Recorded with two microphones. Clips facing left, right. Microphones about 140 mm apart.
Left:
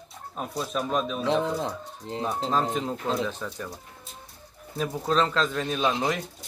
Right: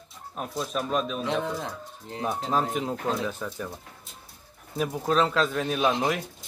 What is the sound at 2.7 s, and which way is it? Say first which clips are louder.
Speech: even; 5° right (ahead or behind).